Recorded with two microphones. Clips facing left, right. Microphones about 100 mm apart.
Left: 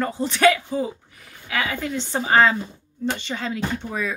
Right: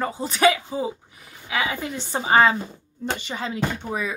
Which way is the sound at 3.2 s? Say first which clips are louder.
Left 1 dB; 10° right (ahead or behind).